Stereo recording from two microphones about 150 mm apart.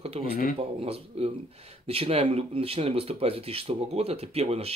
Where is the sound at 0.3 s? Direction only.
80° left.